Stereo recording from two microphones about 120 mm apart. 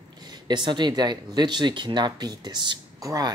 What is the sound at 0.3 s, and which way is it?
Speech, 40° right (ahead or behind).